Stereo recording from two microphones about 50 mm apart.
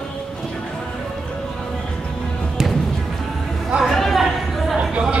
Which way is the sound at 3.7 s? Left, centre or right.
Centre.